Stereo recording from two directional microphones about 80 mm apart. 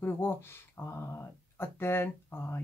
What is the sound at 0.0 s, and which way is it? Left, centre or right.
Speech, left.